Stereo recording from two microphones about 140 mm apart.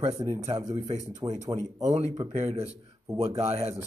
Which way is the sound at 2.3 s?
50° right (ahead or behind).